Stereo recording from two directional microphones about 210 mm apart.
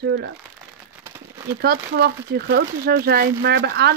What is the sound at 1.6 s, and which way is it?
Speech, 50° right (ahead or behind).